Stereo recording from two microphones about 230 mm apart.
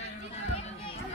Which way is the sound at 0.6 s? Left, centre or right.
Left.